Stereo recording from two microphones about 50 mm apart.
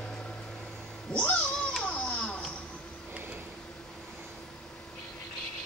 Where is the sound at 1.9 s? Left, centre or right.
Left.